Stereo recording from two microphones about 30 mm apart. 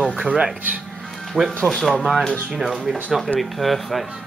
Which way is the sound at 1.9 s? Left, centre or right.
Centre.